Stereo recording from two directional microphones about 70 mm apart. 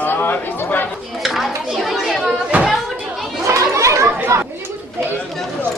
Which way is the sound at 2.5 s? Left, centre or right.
Right.